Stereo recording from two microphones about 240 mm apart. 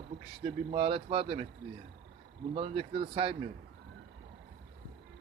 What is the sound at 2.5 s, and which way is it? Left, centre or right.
Speech, right.